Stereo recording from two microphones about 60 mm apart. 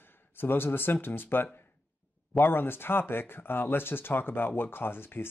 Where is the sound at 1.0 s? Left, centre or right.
Left.